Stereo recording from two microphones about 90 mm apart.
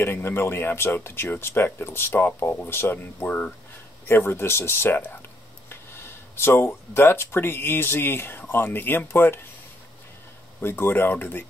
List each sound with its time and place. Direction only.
0.0 s speech: 25° left (ahead or behind)
10.6 s speech: 25° left (ahead or behind)